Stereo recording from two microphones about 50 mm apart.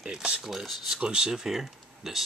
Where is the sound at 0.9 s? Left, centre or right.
Centre.